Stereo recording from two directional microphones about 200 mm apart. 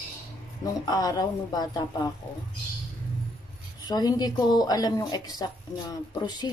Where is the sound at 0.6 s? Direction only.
20° left (ahead or behind).